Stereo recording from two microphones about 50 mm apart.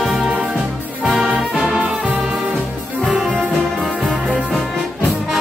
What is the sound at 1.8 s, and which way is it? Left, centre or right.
Music, centre.